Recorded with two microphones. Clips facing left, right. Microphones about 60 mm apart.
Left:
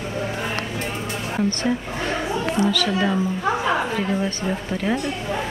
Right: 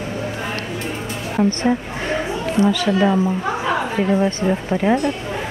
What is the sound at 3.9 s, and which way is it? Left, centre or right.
A woman's voice, centre.